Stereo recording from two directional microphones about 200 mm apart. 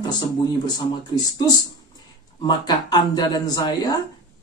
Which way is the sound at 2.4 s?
20° left (ahead or behind).